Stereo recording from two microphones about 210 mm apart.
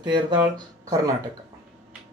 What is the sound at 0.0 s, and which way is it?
Speech, 20° right (ahead or behind).